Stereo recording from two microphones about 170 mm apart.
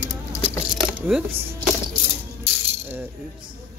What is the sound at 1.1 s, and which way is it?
Speech, 15° right (ahead or behind).